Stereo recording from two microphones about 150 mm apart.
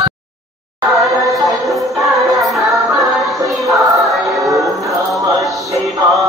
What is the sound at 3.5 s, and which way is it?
Choir, centre (ahead or behind).